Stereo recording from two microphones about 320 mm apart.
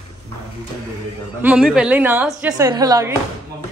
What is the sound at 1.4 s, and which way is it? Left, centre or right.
A woman's voice, centre.